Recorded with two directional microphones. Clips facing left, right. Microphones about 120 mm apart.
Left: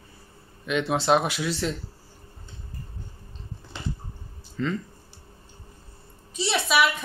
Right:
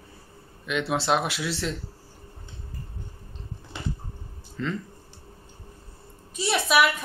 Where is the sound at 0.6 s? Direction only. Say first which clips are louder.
Left 2 dB; centre (ahead or behind).